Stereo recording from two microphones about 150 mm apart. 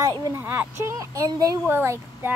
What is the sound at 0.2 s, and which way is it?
Speech, 15° right (ahead or behind).